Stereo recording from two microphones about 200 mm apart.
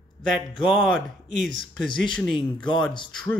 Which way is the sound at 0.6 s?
5° right (ahead or behind).